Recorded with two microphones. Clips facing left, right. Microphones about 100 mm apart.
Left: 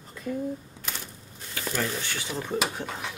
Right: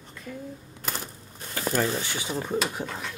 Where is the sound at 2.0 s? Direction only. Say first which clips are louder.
Right 1 dB; 15° right (ahead or behind).